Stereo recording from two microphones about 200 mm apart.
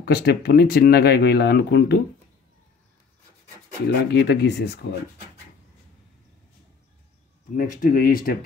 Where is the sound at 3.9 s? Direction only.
60° left (ahead or behind).